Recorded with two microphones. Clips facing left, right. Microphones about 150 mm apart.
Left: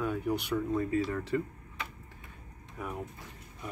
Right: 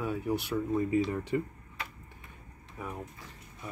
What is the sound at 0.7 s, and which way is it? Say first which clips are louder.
Speech: right 2 dB; 15° right (ahead or behind).